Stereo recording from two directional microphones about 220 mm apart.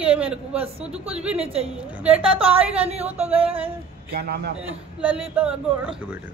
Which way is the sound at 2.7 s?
25° right (ahead or behind).